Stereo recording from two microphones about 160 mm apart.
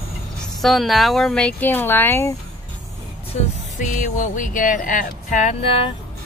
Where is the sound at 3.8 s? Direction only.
55° left (ahead or behind); by 5.9 s 35° left (ahead or behind).